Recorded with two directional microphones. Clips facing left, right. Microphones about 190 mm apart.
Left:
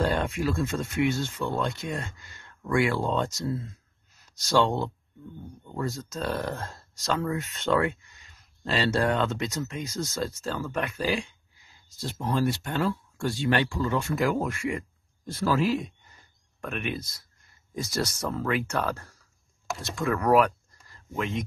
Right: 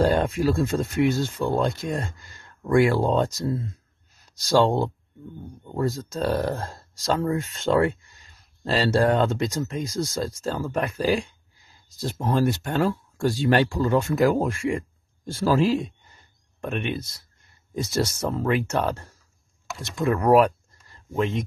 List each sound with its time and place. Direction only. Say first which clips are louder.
0.0 s speech: right 5 dB; 35° right (ahead or behind)